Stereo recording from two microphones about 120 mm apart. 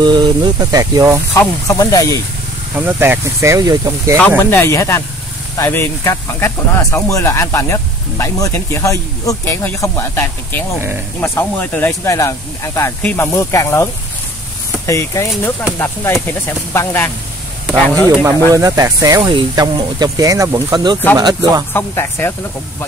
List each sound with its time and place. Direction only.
0.0 s speech: 40° right (ahead or behind)
1.7 s speech: 30° left (ahead or behind)
2.7 s speech: 15° right (ahead or behind)
4.4 s speech: 20° left (ahead or behind)
14.9 s speech: 25° left (ahead or behind)
18.5 s speech: 30° right (ahead or behind)
19.2 s speech: 40° right (ahead or behind)
20.7 s speech: 35° right (ahead or behind)
21.7 s speech: 20° left (ahead or behind)